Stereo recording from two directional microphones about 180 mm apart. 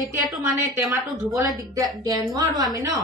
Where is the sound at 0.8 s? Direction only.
Centre (ahead or behind).